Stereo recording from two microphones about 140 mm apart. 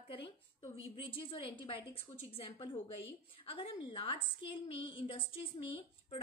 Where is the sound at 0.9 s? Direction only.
35° left (ahead or behind).